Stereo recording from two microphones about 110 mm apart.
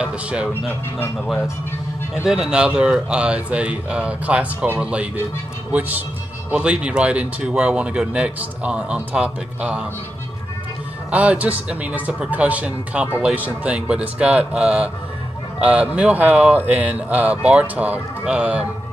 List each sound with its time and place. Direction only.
0.0 s speech: 10° right (ahead or behind)
0.7 s speech: 20° left (ahead or behind)
2.2 s speech: 5° right (ahead or behind)
11.1 s speech: 10° right (ahead or behind)